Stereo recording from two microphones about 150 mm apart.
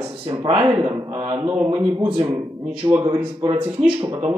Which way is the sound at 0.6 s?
20° right (ahead or behind).